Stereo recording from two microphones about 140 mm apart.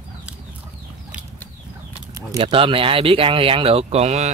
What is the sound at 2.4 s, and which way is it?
Speech, 40° right (ahead or behind).